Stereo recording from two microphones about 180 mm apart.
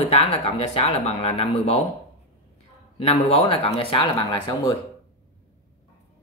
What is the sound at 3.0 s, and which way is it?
Speech, 35° left (ahead or behind).